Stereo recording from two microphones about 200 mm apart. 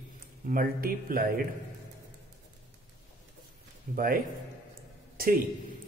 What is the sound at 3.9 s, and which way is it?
A man's voice, 45° right (ahead or behind).